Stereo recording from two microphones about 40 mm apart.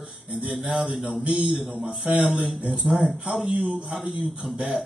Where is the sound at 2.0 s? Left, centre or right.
Right.